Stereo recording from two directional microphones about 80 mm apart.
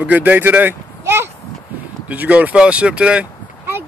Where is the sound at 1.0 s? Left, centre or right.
Right.